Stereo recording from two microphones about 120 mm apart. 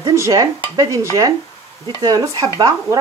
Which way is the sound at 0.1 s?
25° right (ahead or behind).